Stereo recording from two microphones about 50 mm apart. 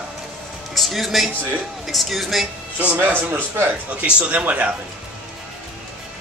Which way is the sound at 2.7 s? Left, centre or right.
Right.